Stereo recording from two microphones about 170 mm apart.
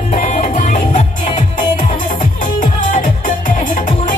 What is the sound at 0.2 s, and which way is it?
Music, 45° left (ahead or behind).